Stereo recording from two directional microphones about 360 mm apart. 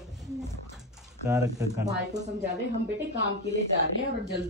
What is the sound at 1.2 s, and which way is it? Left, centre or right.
Speech, centre.